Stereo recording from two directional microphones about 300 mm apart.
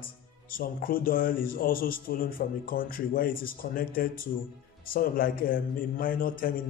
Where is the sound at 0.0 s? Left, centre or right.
Left.